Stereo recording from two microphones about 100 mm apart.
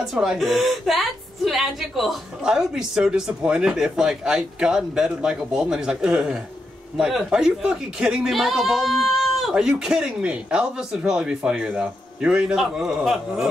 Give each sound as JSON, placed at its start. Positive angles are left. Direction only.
{"t": 0.0, "sound": "a woman's voice", "side_deg": -5}